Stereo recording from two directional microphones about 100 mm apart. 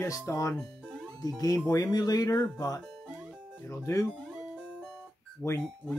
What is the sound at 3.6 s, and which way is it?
Speech, 30° left (ahead or behind).